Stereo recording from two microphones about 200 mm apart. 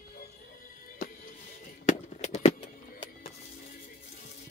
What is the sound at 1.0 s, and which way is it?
Music, 45° left (ahead or behind).